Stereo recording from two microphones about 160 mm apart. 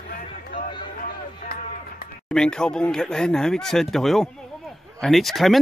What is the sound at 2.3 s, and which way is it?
Speech, 5° left (ahead or behind).